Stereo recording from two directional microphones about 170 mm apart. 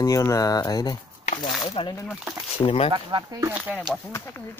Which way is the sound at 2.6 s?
30° left (ahead or behind).